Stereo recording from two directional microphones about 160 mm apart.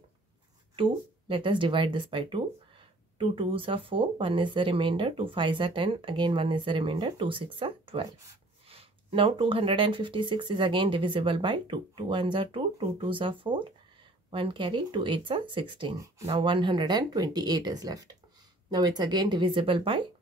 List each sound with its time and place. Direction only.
0.7 s speech: 30° right (ahead or behind)